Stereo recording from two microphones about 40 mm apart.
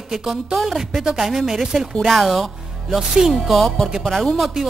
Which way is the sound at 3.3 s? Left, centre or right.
Centre.